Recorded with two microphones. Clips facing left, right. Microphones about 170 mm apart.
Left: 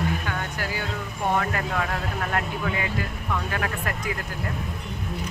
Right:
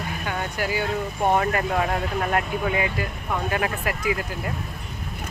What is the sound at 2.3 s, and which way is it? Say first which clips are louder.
Speech: right 3 dB; 10° right (ahead or behind).